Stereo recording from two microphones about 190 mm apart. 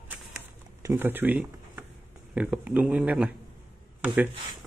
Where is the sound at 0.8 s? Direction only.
10° right (ahead or behind).